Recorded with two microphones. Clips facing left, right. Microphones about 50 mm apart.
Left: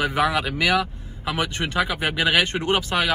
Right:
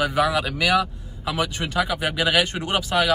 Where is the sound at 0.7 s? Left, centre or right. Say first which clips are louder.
Right 1 dB; left.